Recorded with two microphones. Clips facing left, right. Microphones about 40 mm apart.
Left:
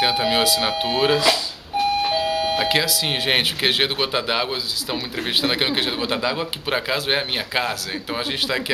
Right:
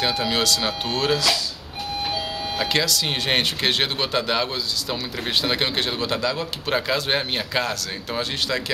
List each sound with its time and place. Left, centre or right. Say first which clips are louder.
0.0 s a man's voice: left 3 dB; centre
2.6 s a man's voice: left 2 dB; centre